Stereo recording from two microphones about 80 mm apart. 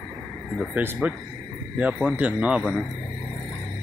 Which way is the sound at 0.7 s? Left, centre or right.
Right.